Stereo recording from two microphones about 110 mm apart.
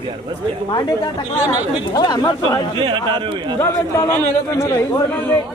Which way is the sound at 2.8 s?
50° right (ahead or behind).